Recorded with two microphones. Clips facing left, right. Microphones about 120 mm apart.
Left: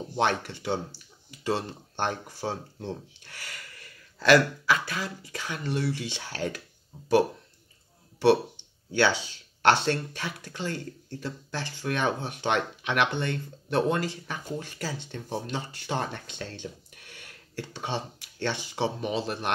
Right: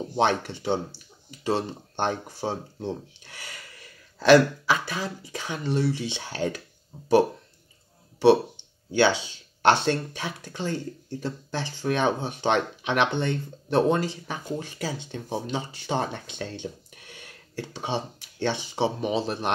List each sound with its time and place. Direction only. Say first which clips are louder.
0.1 s speech: right 3 dB; 20° right (ahead or behind)
8.9 s speech: right 3 dB; 20° right (ahead or behind)